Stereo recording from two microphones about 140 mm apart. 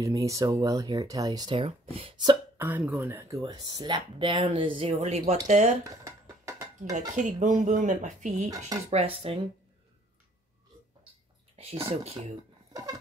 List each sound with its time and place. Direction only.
0.0 s speech: 25° right (ahead or behind)
2.6 s speech: 10° right (ahead or behind); by 4.9 s 40° right (ahead or behind)
4.9 s speech: 50° right (ahead or behind)
6.0 s music: 20° right (ahead or behind)
7.2 s speech: 60° right (ahead or behind)
8.5 s speech: 25° right (ahead or behind)
8.9 s speech: 45° right (ahead or behind)
11.5 s a sound: 45° right (ahead or behind)
12.0 s speech: 50° right (ahead or behind)